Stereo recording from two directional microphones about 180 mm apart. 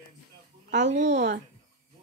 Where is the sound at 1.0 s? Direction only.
75° right (ahead or behind).